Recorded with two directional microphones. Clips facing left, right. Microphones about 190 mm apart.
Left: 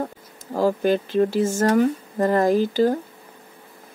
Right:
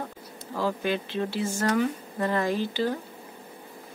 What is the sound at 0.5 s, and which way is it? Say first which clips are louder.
Speech: left 8 dB; 45° left (ahead or behind).